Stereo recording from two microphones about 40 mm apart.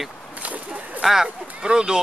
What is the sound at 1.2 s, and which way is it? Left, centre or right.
Speech, centre.